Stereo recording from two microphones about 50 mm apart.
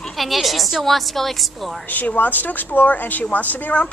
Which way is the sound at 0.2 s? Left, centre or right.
Centre.